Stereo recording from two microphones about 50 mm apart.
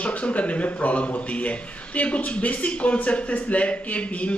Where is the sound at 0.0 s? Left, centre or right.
Left.